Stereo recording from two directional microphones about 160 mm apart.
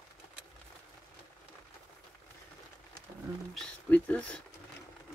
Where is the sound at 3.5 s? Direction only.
5° left (ahead or behind).